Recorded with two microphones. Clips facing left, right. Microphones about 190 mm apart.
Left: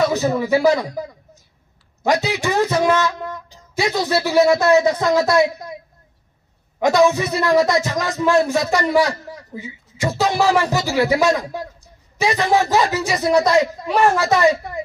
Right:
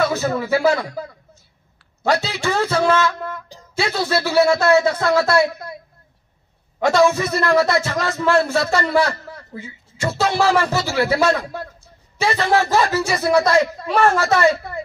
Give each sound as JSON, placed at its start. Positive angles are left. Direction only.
{"t": 0.0, "sound": "a man's voice", "side_deg": 15}
{"t": 6.8, "sound": "a man's voice", "side_deg": 15}